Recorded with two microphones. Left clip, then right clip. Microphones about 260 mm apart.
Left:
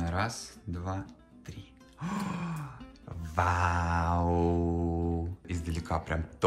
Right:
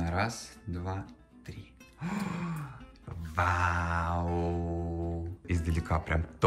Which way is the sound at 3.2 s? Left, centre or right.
Centre.